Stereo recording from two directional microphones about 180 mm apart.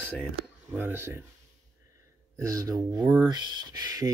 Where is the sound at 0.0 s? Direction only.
5° left (ahead or behind).